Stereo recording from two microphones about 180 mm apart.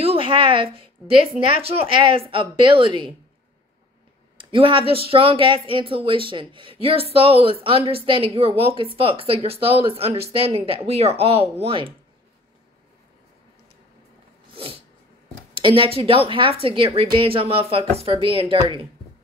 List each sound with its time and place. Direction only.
0.0 s a sound: 30° right (ahead or behind)
1.3 s speech: 35° right (ahead or behind)
4.4 s speech: 30° right (ahead or behind)
14.5 s sneeze: 30° right (ahead or behind)
15.5 s speech: 30° right (ahead or behind)